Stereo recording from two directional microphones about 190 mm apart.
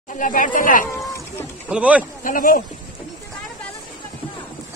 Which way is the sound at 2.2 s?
45° left (ahead or behind).